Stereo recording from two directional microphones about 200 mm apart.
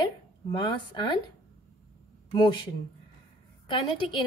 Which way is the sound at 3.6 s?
25° left (ahead or behind).